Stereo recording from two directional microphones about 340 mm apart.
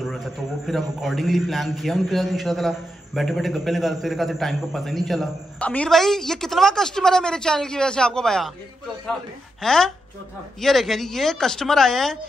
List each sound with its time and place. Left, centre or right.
0.0 s a man's voice: centre